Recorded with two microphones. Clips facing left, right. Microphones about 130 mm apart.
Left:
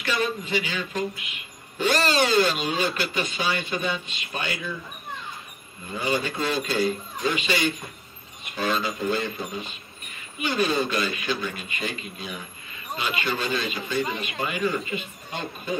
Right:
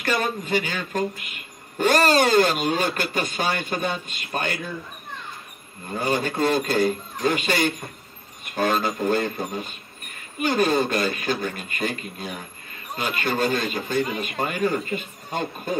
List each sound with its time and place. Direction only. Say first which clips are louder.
0.0 s speech: right 2 dB; 45° right (ahead or behind)
5.9 s speech: right 2 dB; 45° right (ahead or behind)